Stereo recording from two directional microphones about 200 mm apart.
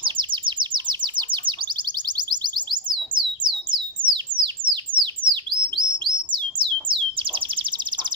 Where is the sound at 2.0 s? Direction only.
20° right (ahead or behind).